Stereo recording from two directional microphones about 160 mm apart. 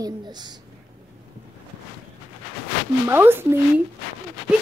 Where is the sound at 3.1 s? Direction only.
15° right (ahead or behind).